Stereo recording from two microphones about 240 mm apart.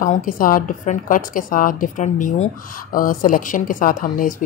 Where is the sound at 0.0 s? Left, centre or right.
Left.